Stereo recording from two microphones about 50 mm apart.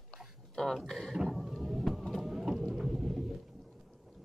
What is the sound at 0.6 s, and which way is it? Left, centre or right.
Speech, centre.